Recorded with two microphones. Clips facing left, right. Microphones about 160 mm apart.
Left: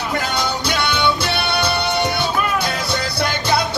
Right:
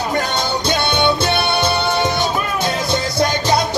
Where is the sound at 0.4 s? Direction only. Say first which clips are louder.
Right 2 dB; 25° right (ahead or behind).